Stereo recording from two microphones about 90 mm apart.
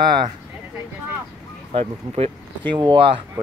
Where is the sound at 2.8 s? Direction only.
60° right (ahead or behind).